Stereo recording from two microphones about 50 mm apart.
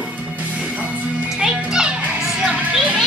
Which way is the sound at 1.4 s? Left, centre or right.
Centre.